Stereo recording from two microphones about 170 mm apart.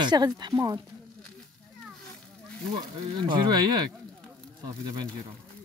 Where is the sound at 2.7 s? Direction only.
25° right (ahead or behind).